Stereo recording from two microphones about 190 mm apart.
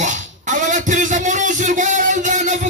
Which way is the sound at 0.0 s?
40° right (ahead or behind).